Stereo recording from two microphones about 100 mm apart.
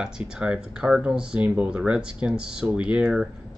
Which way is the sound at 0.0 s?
10° right (ahead or behind).